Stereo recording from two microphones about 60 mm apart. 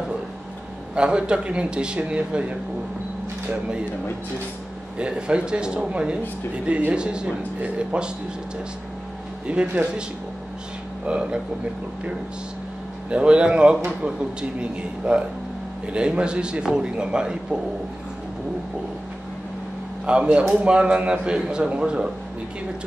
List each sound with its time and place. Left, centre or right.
0.9 s a man's voice: centre
4.9 s a man's voice: centre
9.5 s a man's voice: centre
11.1 s a man's voice: centre
13.1 s a man's voice: centre
20.1 s a man's voice: centre